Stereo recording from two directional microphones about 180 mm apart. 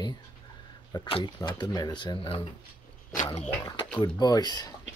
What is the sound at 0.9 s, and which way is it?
Speech, 25° left (ahead or behind).